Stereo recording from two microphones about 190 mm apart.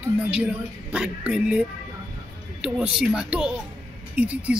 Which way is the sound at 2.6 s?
5° right (ahead or behind).